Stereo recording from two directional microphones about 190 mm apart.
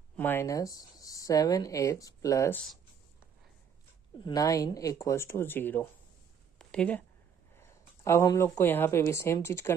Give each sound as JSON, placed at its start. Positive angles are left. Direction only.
{"t": 0.1, "sound": "speech", "side_deg": 10}
{"t": 4.2, "sound": "a woman's voice", "side_deg": 20}